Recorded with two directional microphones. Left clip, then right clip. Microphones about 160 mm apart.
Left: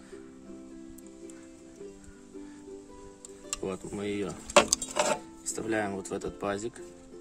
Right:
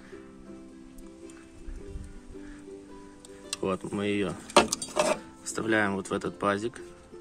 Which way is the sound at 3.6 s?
Centre (ahead or behind).